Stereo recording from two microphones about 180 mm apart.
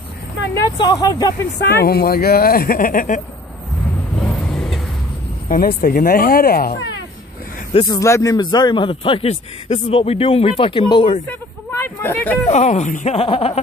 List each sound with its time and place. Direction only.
0.7 s speech: 20° left (ahead or behind)
1.7 s speech: 60° left (ahead or behind)
4.2 s vehicle: 5° left (ahead or behind)
5.5 s speech: 50° left (ahead or behind)
7.8 s speech: 20° left (ahead or behind)
11.8 s speech: 10° left (ahead or behind)
12.4 s speech: 40° left (ahead or behind)